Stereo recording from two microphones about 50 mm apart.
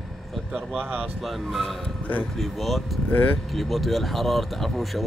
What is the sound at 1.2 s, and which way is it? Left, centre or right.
Speech, centre.